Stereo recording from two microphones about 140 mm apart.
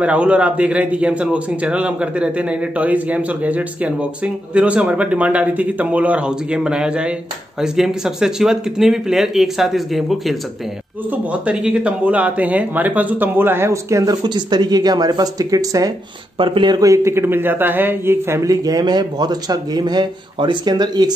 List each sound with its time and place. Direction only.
0.0 s a man's voice: 10° right (ahead or behind); by 15.9 s 25° right (ahead or behind)
16.3 s speech: 40° right (ahead or behind)